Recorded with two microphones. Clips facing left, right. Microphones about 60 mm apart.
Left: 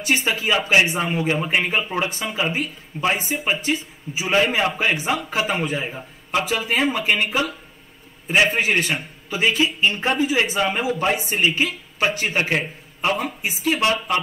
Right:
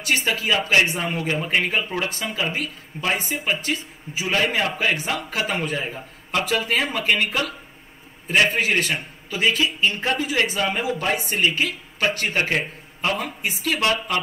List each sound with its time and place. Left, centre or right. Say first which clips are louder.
0.0 s a man's voice: left 1 dB; centre
0.9 s a man's voice: left 3 dB; centre
8.5 s a man's voice: left 1 dB; centre
9.9 s speech: left 2 dB; centre
10.2 s a man's voice: left 3 dB; centre